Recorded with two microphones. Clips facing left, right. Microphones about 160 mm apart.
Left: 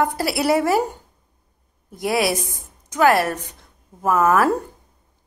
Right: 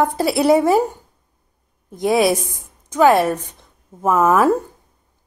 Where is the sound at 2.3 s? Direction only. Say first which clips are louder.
Right 4 dB; 15° right (ahead or behind).